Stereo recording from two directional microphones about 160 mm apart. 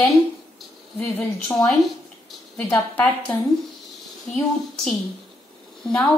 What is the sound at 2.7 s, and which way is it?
Speech, 10° left (ahead or behind).